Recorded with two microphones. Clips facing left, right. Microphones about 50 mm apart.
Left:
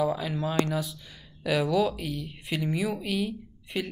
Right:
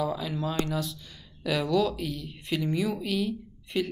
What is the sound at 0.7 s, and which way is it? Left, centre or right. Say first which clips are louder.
Speech: left 1 dB; centre.